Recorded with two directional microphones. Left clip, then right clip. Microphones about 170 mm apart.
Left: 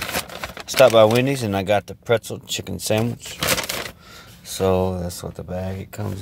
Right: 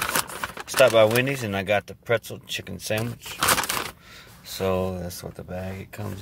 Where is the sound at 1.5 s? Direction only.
35° left (ahead or behind).